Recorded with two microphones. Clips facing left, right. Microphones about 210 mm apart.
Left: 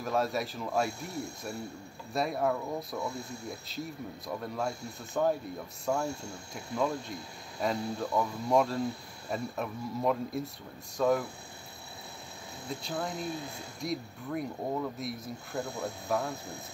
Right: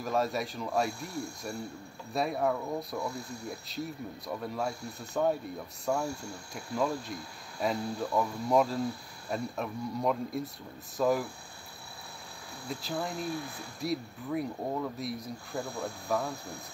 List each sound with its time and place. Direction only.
0.0 s speech: centre (ahead or behind)
2.1 s speech: centre (ahead or behind)
12.6 s speech: centre (ahead or behind)
13.2 s speech: 20° left (ahead or behind)
13.7 s speech: centre (ahead or behind)